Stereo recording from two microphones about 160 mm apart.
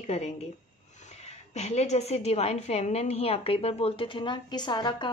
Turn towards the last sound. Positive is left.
turn(degrees=25)  # may be behind; listen again after turning